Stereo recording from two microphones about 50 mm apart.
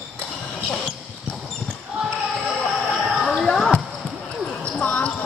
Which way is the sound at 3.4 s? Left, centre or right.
Centre.